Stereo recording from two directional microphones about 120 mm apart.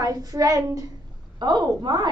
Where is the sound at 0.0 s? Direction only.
30° right (ahead or behind).